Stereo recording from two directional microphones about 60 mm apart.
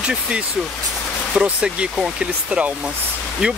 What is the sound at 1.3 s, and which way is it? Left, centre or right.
Speech, centre.